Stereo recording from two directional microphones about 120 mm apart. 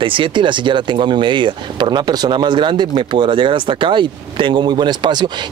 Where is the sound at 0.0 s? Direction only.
45° right (ahead or behind).